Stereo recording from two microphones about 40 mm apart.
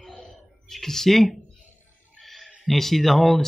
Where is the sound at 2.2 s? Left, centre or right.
Centre.